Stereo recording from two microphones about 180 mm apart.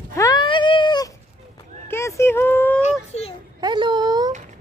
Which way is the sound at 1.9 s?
15° left (ahead or behind).